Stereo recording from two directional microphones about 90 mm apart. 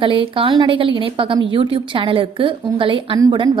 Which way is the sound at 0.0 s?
80° right.